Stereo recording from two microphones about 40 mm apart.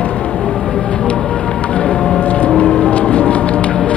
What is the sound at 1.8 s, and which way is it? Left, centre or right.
Vehicle, left.